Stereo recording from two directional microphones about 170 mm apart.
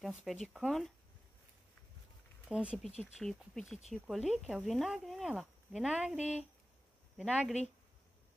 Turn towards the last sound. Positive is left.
turn(degrees=0)  # may be behind; listen again after turning